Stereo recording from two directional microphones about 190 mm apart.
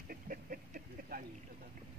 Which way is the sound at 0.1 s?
50° right (ahead or behind).